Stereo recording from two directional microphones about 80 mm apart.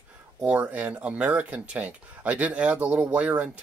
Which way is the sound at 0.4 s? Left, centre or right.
Centre.